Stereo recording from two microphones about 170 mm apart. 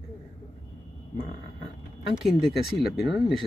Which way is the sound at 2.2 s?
Centre (ahead or behind).